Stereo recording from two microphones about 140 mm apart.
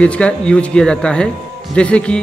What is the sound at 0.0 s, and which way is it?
A man's voice, 10° left (ahead or behind).